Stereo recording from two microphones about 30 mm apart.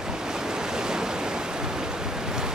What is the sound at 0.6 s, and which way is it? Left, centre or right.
Waves, right.